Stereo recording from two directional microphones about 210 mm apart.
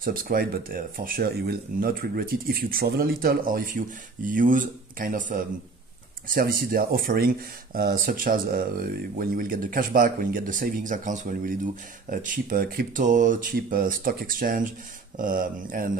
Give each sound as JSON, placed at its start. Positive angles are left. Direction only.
{"t": 0.0, "sound": "speech", "side_deg": -45}